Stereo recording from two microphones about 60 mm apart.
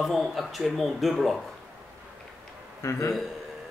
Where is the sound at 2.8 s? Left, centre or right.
Left.